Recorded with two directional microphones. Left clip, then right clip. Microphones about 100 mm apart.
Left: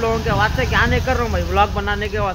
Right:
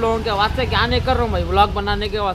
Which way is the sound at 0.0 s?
25° right (ahead or behind).